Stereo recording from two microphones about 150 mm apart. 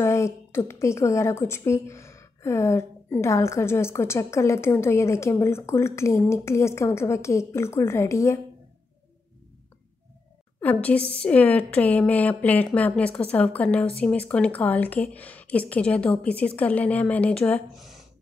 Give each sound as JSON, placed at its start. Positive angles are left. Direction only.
{"t": 0.0, "sound": "a woman's voice", "side_deg": 20}
{"t": 10.6, "sound": "a woman's voice", "side_deg": 10}
{"t": 17.7, "sound": "a sound", "side_deg": 0}